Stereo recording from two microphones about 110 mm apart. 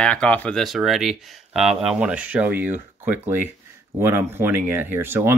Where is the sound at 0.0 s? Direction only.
10° left (ahead or behind).